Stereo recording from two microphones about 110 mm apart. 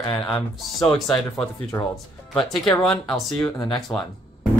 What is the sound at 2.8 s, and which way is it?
Speech, 5° left (ahead or behind).